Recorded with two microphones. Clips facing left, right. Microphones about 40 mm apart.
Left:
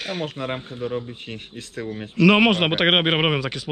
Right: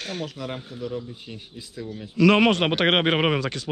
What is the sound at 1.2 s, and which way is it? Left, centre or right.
Speech, left.